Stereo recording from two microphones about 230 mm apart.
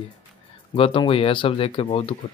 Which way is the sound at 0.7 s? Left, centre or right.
Left.